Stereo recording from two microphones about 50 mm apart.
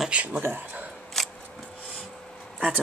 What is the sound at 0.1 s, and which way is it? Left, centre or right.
Speech, right.